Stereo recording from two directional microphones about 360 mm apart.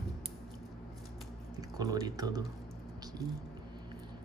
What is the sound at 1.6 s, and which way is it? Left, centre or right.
Speech, centre.